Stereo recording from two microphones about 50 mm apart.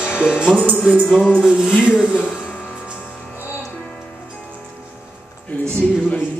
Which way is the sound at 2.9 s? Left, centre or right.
Centre.